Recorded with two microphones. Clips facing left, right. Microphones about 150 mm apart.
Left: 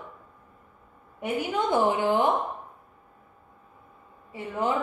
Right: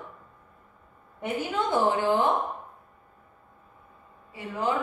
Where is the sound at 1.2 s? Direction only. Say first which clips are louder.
Left 1 dB; 15° left (ahead or behind).